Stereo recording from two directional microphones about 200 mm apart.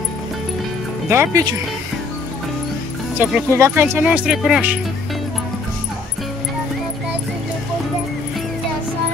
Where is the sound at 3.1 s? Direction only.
10° right (ahead or behind).